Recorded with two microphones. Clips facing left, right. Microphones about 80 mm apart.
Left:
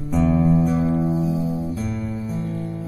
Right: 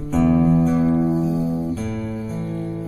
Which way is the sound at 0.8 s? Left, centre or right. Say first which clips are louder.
Right 3 dB; centre.